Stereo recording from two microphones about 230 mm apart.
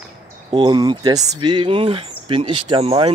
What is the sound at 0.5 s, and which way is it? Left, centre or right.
Speech, centre.